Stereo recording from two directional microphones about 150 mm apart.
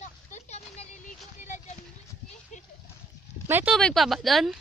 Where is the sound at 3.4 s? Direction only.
15° right (ahead or behind).